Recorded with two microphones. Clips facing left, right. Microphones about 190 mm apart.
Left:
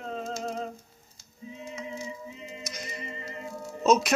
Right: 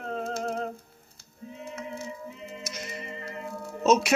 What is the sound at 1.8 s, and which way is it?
Synthetic singing, 60° right (ahead or behind).